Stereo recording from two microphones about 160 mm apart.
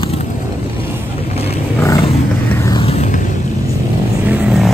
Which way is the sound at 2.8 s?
45° left (ahead or behind).